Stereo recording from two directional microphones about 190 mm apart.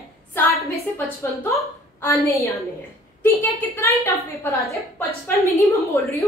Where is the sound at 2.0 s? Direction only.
10° left (ahead or behind).